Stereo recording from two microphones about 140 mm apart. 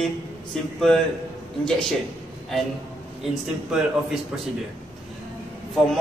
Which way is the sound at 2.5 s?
Centre (ahead or behind).